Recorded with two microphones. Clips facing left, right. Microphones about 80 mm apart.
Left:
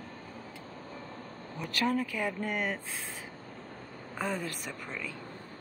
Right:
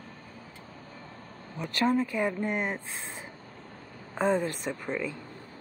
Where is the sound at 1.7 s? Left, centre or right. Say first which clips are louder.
Right 4 dB; right.